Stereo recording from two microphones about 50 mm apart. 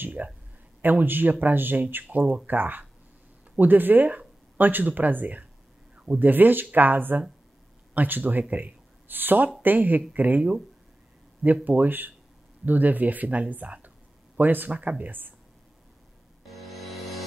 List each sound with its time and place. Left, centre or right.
0.0 s speech: right
2.0 s speech: right
11.6 s speech: right
16.5 s music: centre